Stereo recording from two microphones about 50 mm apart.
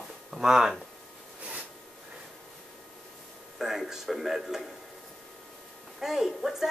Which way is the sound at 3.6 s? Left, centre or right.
Centre.